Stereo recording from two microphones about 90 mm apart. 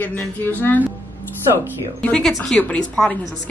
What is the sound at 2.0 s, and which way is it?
A woman's voice, 5° left (ahead or behind).